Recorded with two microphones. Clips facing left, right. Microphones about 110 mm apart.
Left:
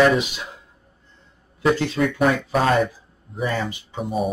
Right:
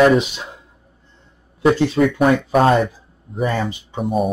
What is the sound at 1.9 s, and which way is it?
Speech, centre (ahead or behind).